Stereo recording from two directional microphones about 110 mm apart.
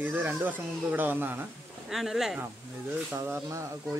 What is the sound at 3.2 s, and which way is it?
Speech, 25° right (ahead or behind).